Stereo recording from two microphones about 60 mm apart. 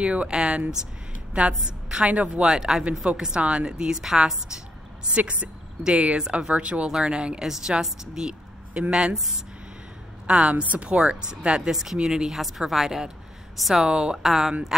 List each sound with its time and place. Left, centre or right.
0.0 s a woman's voice: centre
5.1 s speech: centre
10.2 s speech: centre
13.8 s speech: centre